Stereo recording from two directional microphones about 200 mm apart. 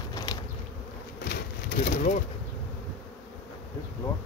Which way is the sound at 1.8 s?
35° left (ahead or behind).